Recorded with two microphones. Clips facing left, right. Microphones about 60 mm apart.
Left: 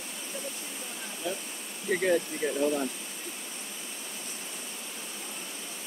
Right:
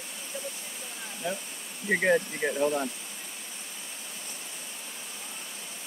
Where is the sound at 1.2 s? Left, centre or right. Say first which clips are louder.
Right 1 dB; right.